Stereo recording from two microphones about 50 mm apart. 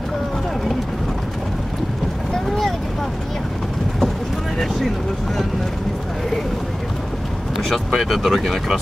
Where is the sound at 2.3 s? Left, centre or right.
Centre.